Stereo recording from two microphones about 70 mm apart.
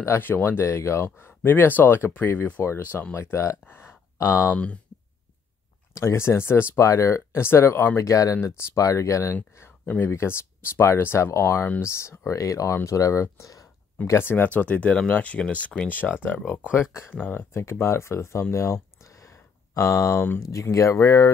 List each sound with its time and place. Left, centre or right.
0.0 s speech: left
3.2 s speech: left
3.6 s a sound: left
4.5 s speech: centre
5.9 s speech: left
8.0 s speech: left
14.0 s speech: left
17.2 s speech: left